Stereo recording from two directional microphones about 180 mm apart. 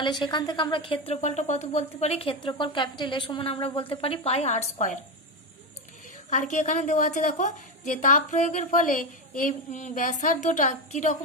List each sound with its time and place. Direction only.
0.0 s speech: 25° left (ahead or behind)
6.3 s a woman's voice: 45° left (ahead or behind)